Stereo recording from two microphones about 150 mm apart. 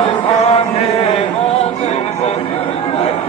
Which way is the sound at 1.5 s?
45° left (ahead or behind).